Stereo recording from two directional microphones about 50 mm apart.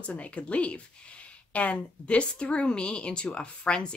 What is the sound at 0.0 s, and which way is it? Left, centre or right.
A woman's voice, left.